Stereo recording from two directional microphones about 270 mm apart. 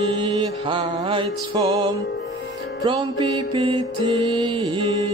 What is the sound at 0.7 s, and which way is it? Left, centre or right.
Music, centre.